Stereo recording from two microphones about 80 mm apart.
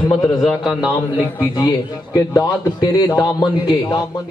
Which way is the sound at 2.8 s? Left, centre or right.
Left.